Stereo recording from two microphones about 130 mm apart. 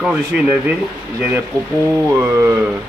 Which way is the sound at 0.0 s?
10° right (ahead or behind).